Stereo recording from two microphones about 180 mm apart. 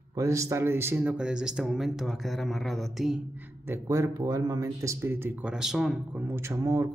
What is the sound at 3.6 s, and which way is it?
Speech, 15° right (ahead or behind).